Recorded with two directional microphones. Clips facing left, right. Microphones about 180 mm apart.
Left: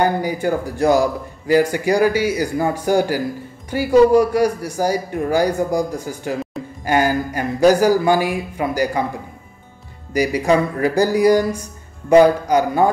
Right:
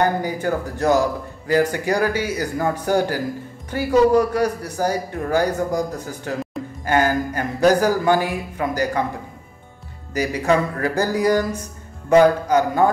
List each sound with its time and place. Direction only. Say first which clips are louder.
0.0 s a man's voice: left 2 dB; 10° left (ahead or behind)
10.1 s a man's voice: left 3 dB; 15° left (ahead or behind)